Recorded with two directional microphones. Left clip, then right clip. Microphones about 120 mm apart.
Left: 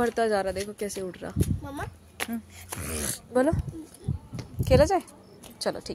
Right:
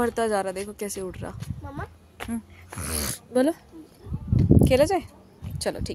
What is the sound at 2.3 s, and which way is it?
Speech, 35° right (ahead or behind).